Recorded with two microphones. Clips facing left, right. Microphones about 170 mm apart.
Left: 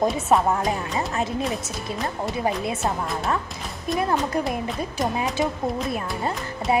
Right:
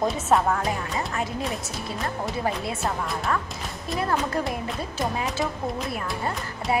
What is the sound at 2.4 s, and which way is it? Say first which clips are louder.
Speech: left 4 dB; 20° left (ahead or behind).